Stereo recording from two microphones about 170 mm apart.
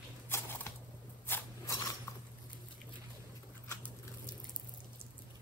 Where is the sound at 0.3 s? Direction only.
15° left (ahead or behind).